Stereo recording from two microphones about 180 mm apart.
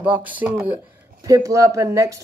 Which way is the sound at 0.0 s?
10° right (ahead or behind).